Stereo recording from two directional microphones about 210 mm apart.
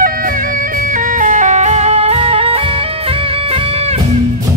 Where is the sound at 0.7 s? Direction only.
40° right (ahead or behind).